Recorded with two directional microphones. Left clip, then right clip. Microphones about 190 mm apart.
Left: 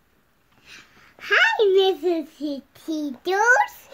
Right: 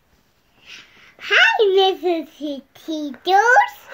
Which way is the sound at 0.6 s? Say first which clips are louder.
Right 5 dB; 20° left (ahead or behind).